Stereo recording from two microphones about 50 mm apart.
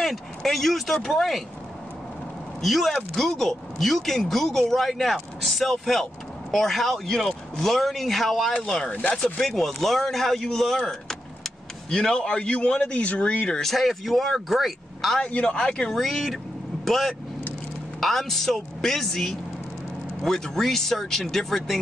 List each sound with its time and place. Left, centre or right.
0.0 s speech: centre
2.6 s speech: centre
8.8 s speech: left
9.4 s speech: centre; by 13.5 s left
13.5 s speech: centre
15.4 s speech: centre
16.0 s speech: centre